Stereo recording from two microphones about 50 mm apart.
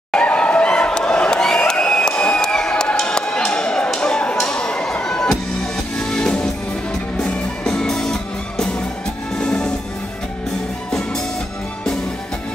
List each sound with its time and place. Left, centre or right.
0.1 s a sound: left
5.0 s music: centre
10.9 s music: centre